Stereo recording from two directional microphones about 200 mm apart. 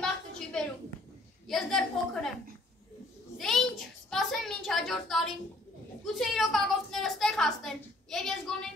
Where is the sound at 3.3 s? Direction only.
Centre (ahead or behind).